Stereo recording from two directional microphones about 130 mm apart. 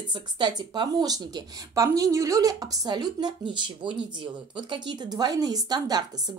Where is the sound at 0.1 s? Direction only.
35° right (ahead or behind).